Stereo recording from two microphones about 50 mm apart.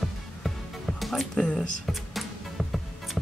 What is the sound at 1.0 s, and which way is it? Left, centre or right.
Music, centre.